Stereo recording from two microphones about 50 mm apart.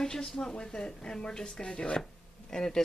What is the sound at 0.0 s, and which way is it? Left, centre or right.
Speech, centre.